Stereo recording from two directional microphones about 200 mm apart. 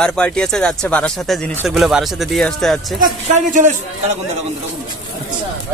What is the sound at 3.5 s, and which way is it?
Speech, 35° right (ahead or behind).